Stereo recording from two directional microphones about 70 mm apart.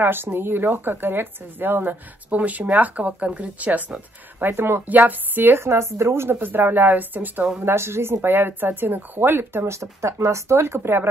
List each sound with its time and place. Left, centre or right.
0.0 s speech: right
7.6 s a woman's voice: right
9.8 s a woman's voice: right